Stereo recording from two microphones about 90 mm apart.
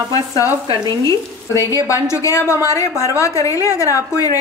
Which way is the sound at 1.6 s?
35° left (ahead or behind).